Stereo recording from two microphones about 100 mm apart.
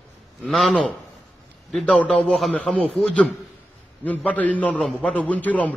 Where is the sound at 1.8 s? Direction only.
10° left (ahead or behind).